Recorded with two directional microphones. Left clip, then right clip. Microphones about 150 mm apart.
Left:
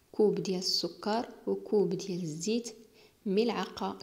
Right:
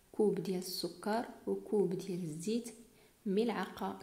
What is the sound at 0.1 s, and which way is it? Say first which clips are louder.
Speech: left 5 dB; 25° left (ahead or behind).